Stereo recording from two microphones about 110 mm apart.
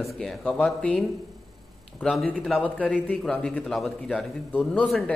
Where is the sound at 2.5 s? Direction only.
15° left (ahead or behind).